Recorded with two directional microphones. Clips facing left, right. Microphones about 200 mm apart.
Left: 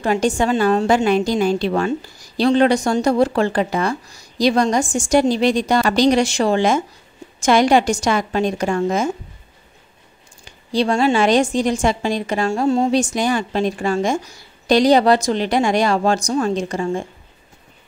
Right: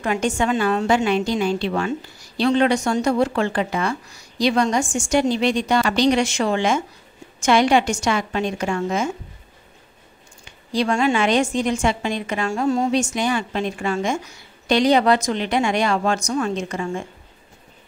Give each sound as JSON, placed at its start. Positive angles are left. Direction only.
{"t": 0.0, "sound": "a woman's voice", "side_deg": 35}
{"t": 10.4, "sound": "a woman's voice", "side_deg": 35}